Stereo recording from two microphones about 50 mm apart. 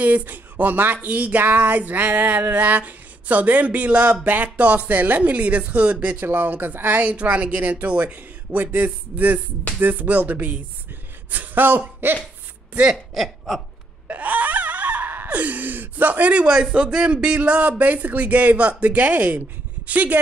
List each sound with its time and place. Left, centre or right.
0.0 s speech: right
6.2 s speech: right
12.0 s cough: right
12.9 s speech: centre
14.0 s a sound: right
16.4 s speech: centre